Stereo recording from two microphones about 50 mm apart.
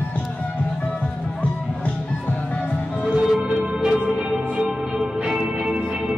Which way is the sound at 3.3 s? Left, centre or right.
Centre.